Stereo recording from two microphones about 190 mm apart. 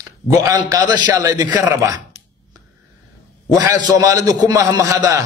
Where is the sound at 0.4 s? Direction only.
20° right (ahead or behind).